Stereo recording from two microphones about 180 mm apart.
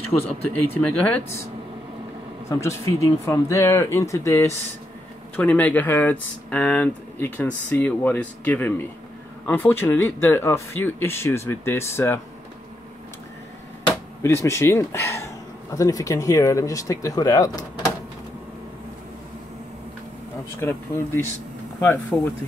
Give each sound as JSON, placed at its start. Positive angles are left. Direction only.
{"t": 0.1, "sound": "speech", "side_deg": 25}
{"t": 0.5, "sound": "speech", "side_deg": 5}
{"t": 2.6, "sound": "speech", "side_deg": 15}
{"t": 14.2, "sound": "speech", "side_deg": 15}
{"t": 20.6, "sound": "speech", "side_deg": 15}